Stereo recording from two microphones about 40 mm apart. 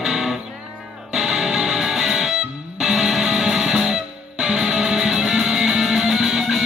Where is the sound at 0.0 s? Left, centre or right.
Centre.